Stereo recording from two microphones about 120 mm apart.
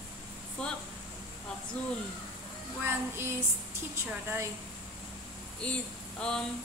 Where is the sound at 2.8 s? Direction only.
20° right (ahead or behind).